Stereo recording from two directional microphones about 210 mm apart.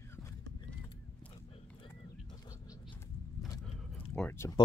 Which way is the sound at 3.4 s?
Centre (ahead or behind).